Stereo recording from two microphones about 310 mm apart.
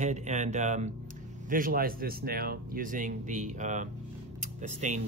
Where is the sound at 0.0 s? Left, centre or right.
Right.